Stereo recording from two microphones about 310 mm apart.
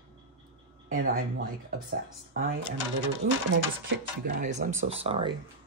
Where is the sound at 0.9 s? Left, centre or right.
Right.